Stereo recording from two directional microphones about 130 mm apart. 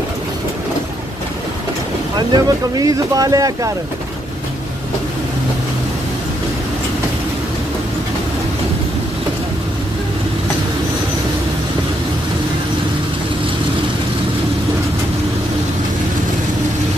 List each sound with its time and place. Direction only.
2.1 s speech: 30° right (ahead or behind)